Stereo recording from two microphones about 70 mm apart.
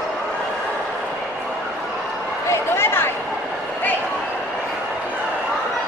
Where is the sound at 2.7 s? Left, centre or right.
Left.